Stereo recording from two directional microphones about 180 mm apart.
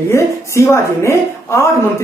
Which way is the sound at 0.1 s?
15° left (ahead or behind).